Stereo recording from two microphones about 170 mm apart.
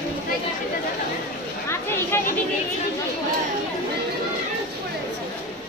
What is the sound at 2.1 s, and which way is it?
Speech, 15° left (ahead or behind).